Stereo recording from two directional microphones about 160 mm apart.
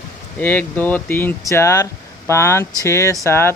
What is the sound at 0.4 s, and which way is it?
Speech, 10° left (ahead or behind).